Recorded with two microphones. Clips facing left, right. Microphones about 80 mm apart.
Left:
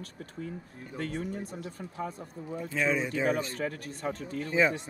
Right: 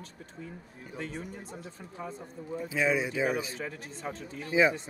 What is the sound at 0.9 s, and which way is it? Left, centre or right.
Speech, left.